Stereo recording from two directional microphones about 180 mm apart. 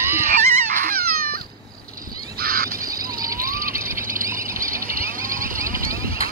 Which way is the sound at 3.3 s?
15° right (ahead or behind).